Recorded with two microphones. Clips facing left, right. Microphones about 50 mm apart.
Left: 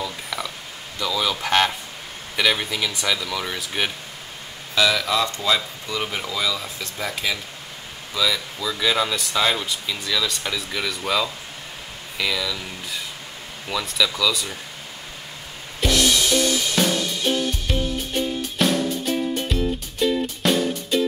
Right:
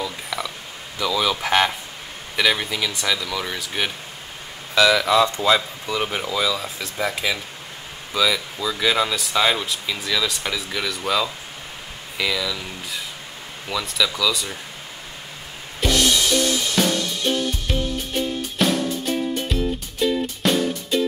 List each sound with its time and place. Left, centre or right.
0.0 s a sound: centre
0.9 s speech: centre
5.0 s speech: right; by 14.6 s centre
15.8 s music: centre